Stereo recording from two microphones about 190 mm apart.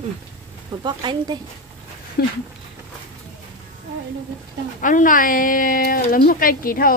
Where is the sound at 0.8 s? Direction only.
25° right (ahead or behind).